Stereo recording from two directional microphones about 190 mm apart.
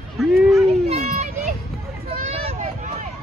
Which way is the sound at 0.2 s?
Centre (ahead or behind).